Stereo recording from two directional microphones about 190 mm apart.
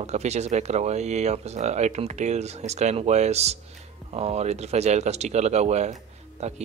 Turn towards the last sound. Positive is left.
turn(degrees=-35)  # may be behind; listen again after turning